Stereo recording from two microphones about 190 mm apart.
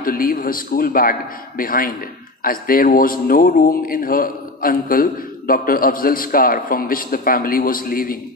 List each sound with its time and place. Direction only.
0.0 s speech: 50° left (ahead or behind)